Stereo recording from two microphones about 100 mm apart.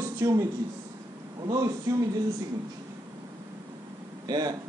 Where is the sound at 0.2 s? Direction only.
35° right (ahead or behind).